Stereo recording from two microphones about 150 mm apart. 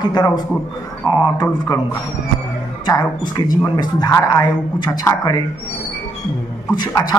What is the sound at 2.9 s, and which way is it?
A man's voice, 25° left (ahead or behind).